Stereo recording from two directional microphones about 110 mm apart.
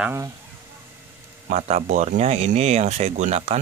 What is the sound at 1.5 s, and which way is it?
Speech, 85° right.